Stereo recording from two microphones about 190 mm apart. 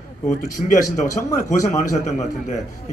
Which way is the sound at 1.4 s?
40° left (ahead or behind).